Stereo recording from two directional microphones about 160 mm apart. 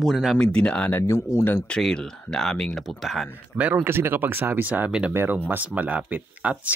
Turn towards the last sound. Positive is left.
turn(degrees=-10)  # may be behind; listen again after turning